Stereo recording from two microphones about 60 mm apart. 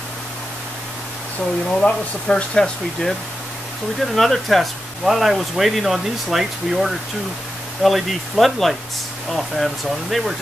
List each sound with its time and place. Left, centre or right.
1.7 s speech: centre